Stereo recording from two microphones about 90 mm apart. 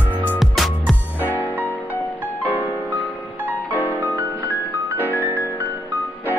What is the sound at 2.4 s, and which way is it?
Music, 20° right (ahead or behind).